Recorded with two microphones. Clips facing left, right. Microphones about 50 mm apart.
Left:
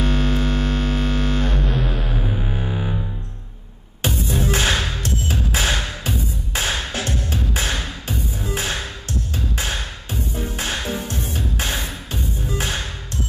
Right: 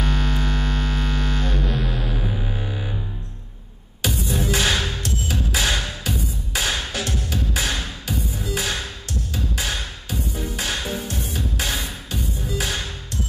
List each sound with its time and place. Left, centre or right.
0.0 s music: left
2.1 s music: centre
4.0 s music: left